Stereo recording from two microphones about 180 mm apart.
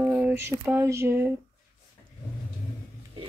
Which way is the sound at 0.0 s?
10° right (ahead or behind).